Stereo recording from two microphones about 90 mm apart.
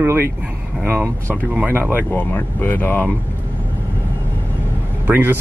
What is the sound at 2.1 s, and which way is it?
Speech, 20° left (ahead or behind).